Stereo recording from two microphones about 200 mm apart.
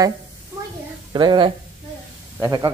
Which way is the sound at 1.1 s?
25° right (ahead or behind).